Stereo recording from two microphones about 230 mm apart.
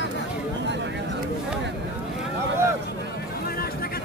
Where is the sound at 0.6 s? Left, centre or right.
Right.